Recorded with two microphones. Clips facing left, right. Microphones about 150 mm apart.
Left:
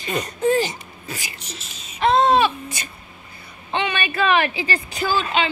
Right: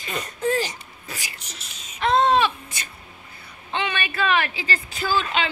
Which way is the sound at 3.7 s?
15° left (ahead or behind).